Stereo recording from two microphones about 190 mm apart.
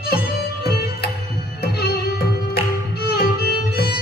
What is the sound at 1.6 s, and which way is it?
Music, 55° left (ahead or behind).